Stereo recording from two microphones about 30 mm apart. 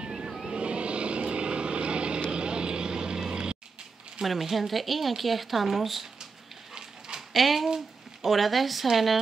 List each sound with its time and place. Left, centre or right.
0.2 s vehicle: centre
0.6 s vehicle: right
3.3 s music: right
4.2 s speech: centre
7.2 s speech: centre